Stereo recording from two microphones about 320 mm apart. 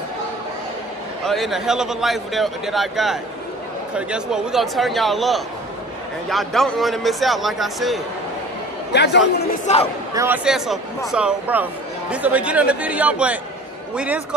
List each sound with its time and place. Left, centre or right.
1.2 s speech: centre
8.9 s speech: left
9.7 s speech: left
10.1 s speech: centre